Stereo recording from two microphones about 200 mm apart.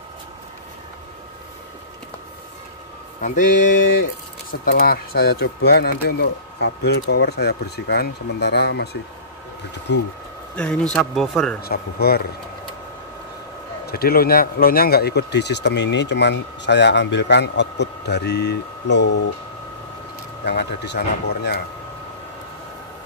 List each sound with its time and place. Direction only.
3.2 s speech: 40° left (ahead or behind); by 10.0 s 60° left (ahead or behind)
10.5 s speech: 5° left (ahead or behind)
11.6 s speech: 50° left (ahead or behind)
13.8 s speech: 50° left (ahead or behind)
20.4 s speech: 60° left (ahead or behind)